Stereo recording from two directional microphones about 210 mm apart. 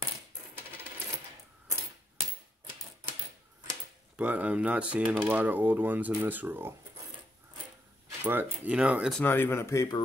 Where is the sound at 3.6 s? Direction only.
5° right (ahead or behind).